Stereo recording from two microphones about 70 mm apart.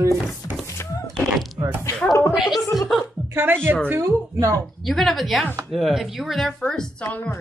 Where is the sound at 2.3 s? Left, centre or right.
Centre.